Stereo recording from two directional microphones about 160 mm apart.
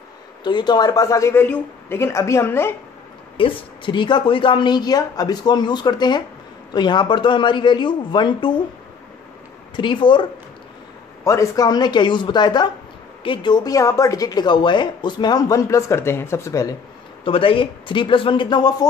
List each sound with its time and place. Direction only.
0.4 s speech: 30° left (ahead or behind)
3.3 s speech: 35° left (ahead or behind)
9.8 s speech: 30° left (ahead or behind)
11.2 s speech: 20° left (ahead or behind)
17.2 s speech: 35° left (ahead or behind)